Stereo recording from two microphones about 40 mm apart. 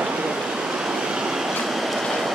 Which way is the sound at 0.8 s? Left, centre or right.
Centre.